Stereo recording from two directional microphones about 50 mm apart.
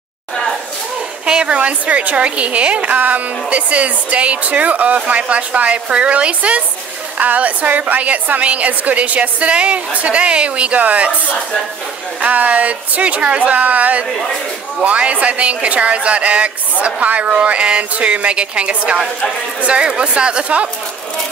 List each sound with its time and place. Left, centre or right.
1.2 s a woman's voice: centre